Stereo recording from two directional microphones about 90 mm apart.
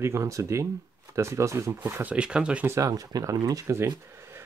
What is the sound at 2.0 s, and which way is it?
Speech, 10° right (ahead or behind).